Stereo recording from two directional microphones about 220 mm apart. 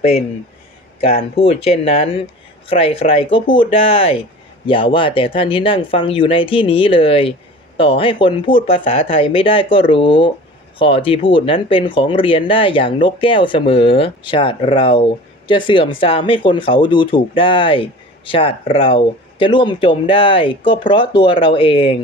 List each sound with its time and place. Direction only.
1.3 s speech: 25° left (ahead or behind)